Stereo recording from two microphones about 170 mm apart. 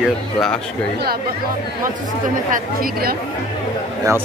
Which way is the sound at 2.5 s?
60° right (ahead or behind).